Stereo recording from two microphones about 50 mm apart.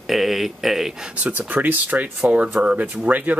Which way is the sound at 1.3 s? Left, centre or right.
Right.